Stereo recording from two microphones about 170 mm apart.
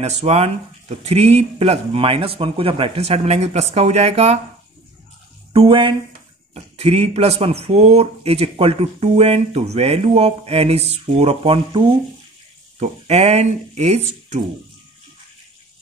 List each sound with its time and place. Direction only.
0.0 s speech: 40° right (ahead or behind)
5.5 s speech: 30° right (ahead or behind)